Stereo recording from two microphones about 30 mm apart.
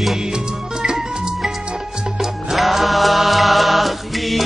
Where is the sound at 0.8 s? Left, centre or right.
Centre.